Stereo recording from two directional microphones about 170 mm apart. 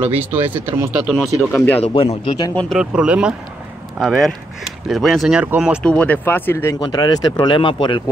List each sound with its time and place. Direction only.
0.0 s speech: 10° right (ahead or behind)
1.1 s speech: 5° left (ahead or behind)
2.2 s speech: 25° left (ahead or behind)
2.5 s speech: 5° left (ahead or behind)
2.8 s speech: 5° right (ahead or behind)
5.8 s speech: 10° left (ahead or behind); by 8.0 s 30° left (ahead or behind)